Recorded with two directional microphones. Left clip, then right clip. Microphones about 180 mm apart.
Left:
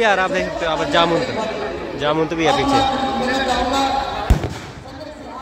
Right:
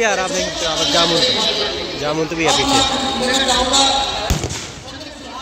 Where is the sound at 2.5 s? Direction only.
50° left (ahead or behind).